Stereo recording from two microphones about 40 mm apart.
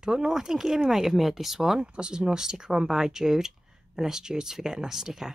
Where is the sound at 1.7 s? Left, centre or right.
Right.